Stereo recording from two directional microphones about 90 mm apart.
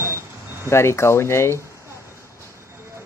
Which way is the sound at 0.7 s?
30° left (ahead or behind).